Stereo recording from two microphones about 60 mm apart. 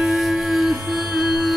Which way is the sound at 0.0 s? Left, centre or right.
Centre.